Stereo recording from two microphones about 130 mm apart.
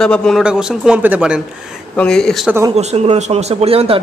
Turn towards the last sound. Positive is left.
turn(degrees=-50)  # may be behind; listen again after turning